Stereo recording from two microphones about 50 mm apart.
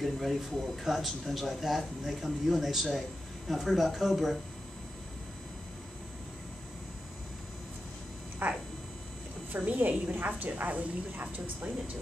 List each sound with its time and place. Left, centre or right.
0.0 s speech: centre
8.4 s speech: right